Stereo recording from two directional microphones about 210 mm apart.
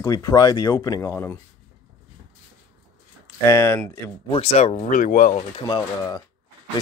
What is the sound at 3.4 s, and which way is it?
Speech, 10° left (ahead or behind).